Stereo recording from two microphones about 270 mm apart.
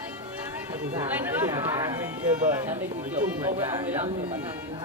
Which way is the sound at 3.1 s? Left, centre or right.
Centre.